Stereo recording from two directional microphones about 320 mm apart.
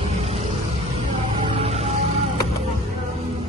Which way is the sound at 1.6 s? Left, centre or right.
Centre.